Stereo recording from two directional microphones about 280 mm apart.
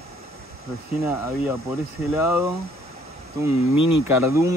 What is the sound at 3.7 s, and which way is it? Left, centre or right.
Speech, left.